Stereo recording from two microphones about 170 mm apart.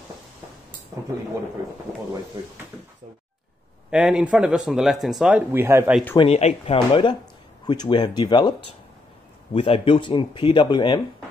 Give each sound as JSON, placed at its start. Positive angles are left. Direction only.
{"t": 3.9, "sound": "speech", "side_deg": -5}
{"t": 6.1, "sound": "speech", "side_deg": 35}